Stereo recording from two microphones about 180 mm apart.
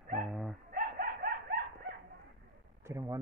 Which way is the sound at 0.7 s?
55° right (ahead or behind).